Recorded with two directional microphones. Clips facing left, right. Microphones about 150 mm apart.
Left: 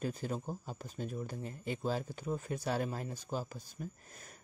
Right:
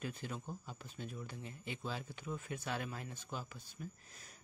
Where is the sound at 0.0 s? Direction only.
40° left (ahead or behind).